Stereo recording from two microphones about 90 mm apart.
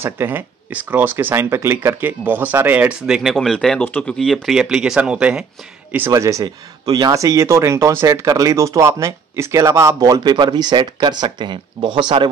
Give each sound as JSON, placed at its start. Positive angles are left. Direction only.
{"t": 0.0, "sound": "speech", "side_deg": -25}
{"t": 3.0, "sound": "speech", "side_deg": -5}
{"t": 3.8, "sound": "speech", "side_deg": 15}
{"t": 5.9, "sound": "speech", "side_deg": -25}
{"t": 6.1, "sound": "speech", "side_deg": -35}
{"t": 6.4, "sound": "speech", "side_deg": -45}